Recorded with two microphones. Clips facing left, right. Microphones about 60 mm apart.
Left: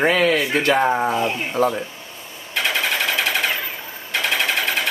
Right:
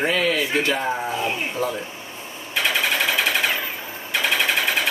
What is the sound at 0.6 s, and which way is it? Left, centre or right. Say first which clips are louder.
Speech: left 5 dB; left.